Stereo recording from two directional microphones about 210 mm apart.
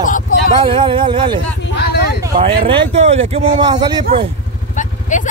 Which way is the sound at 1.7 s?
50° left (ahead or behind).